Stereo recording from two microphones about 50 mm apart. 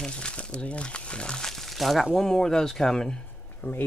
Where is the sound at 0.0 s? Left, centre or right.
Centre.